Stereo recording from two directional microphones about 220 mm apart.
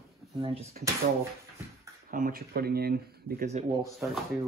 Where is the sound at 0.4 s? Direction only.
25° right (ahead or behind).